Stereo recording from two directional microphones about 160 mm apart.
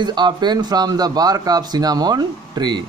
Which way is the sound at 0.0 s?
30° right (ahead or behind).